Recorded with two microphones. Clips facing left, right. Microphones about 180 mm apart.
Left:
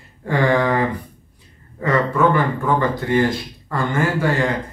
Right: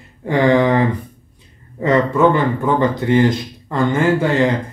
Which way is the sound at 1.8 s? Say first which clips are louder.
Right 4 dB; 20° right (ahead or behind).